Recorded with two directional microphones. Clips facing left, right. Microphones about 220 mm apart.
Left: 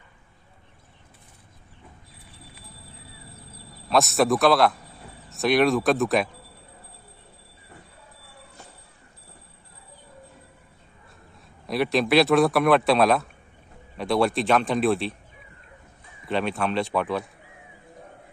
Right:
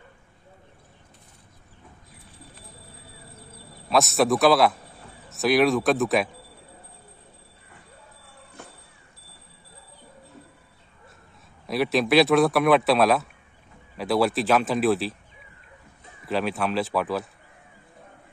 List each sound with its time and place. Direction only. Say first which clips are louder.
3.9 s a man's voice: even; centre (ahead or behind)
8.6 s a sound: right 6 dB; 55° right (ahead or behind)
11.6 s a man's voice: even; centre (ahead or behind)
16.3 s a man's voice: even; centre (ahead or behind)